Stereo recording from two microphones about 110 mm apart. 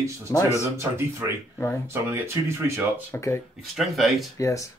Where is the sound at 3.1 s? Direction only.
25° left (ahead or behind).